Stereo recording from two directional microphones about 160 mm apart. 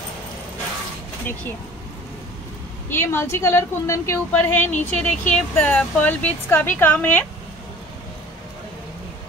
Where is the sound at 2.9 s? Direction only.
15° left (ahead or behind).